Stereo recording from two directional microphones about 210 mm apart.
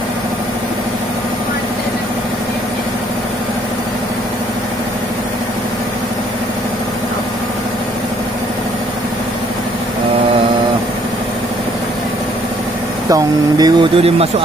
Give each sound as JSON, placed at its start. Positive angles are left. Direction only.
{"t": 13.1, "sound": "speech", "side_deg": -20}